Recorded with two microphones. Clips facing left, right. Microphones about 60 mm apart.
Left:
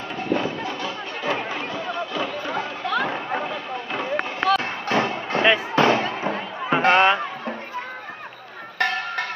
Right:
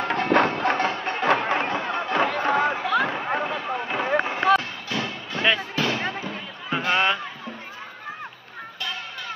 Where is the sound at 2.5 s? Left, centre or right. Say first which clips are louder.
Right 6 dB; right.